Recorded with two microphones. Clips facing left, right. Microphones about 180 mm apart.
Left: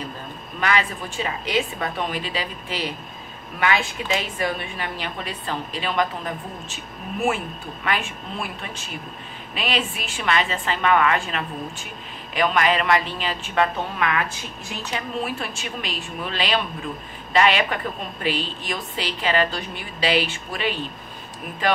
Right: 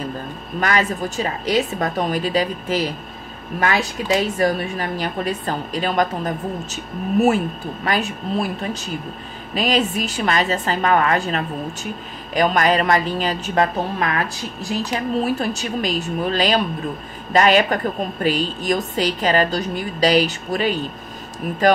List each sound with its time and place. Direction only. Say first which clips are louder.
0.6 s a woman's voice: right 3 dB; 40° right (ahead or behind)